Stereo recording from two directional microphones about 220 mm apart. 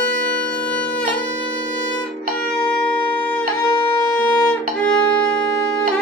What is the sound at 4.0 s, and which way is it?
Music, 15° left (ahead or behind).